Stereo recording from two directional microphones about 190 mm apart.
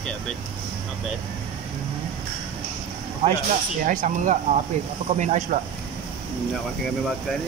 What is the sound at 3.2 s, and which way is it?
Speech, 35° right (ahead or behind).